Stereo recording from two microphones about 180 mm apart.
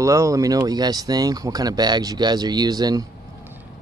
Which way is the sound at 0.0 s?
15° right (ahead or behind).